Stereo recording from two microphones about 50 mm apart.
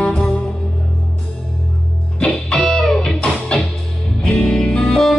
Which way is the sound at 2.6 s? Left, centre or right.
Centre.